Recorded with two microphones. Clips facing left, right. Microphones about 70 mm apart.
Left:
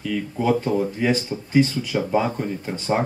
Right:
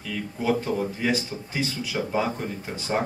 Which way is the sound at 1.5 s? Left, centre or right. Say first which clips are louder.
Left 10 dB; left.